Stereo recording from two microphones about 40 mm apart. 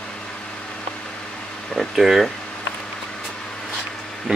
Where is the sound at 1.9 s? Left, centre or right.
Centre.